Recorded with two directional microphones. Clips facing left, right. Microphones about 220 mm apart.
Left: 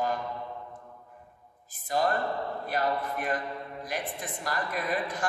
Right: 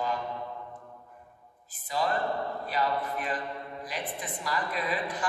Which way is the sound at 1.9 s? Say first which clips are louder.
Left 2 dB; 50° left (ahead or behind).